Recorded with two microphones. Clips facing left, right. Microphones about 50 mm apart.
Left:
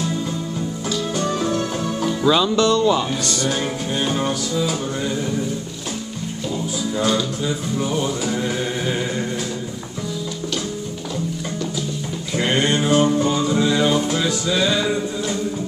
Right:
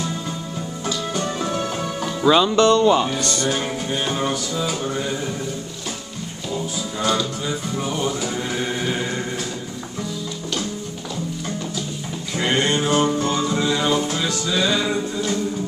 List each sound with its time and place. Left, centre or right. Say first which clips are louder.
1.1 s music: left 4 dB; centre
2.2 s speech: right 2 dB; centre
3.1 s music: even; centre
7.8 s chant: left 2 dB; centre
12.4 s music: left 1 dB; centre